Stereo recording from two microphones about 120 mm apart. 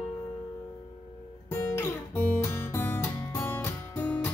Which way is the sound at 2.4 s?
20° left (ahead or behind).